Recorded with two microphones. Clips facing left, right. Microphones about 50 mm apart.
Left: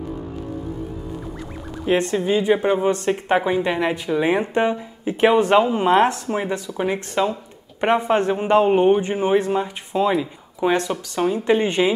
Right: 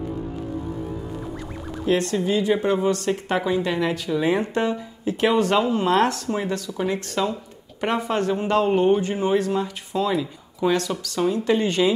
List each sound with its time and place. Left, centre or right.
1.9 s speech: left